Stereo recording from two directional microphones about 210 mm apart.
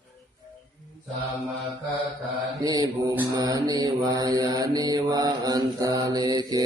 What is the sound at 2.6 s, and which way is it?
Mantra, 20° right (ahead or behind).